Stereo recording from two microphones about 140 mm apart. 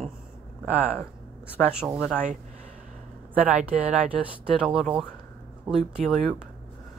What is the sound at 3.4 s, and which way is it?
Speech, 10° right (ahead or behind).